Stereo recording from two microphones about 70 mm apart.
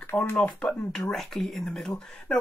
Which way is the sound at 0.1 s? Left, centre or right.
Left.